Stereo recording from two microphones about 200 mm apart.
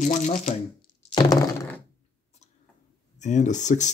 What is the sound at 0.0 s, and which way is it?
Speech, 40° left (ahead or behind).